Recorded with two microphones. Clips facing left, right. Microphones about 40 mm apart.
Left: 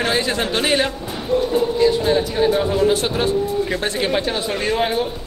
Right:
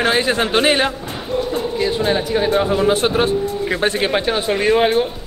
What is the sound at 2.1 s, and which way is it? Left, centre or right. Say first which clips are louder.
Speech: even; right.